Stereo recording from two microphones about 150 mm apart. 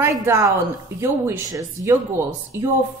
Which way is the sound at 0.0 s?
20° right (ahead or behind).